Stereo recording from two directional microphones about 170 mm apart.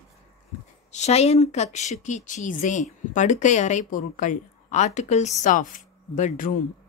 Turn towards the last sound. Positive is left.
turn(degrees=45)  # may be behind; listen again after turning